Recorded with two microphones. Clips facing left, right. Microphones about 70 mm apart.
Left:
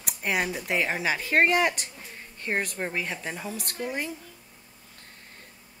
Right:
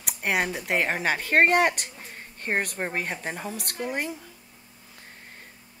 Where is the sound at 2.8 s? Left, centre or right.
Right.